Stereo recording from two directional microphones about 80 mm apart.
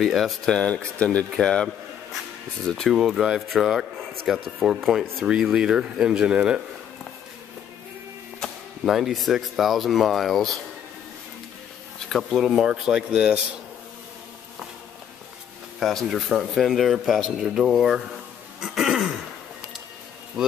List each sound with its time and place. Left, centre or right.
0.0 s speech: centre
0.6 s speech: centre
8.4 s speech: centre
12.1 s speech: centre
15.8 s speech: centre
20.4 s speech: centre